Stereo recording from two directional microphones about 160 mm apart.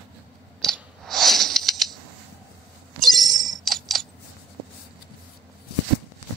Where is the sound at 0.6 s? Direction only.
Centre (ahead or behind).